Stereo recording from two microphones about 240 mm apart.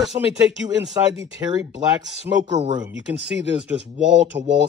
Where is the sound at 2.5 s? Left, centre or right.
Right.